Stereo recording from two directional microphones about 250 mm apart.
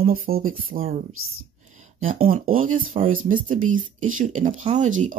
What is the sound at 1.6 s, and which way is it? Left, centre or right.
Speech, right.